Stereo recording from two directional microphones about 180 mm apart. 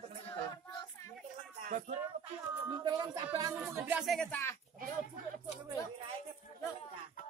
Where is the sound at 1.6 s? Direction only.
45° right (ahead or behind).